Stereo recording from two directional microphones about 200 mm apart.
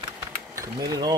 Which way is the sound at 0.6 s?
20° right (ahead or behind).